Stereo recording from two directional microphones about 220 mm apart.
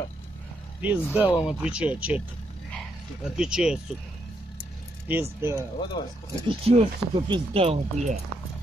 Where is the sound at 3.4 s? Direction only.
5° right (ahead or behind).